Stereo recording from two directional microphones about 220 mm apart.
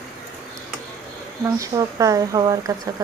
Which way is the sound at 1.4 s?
15° right (ahead or behind).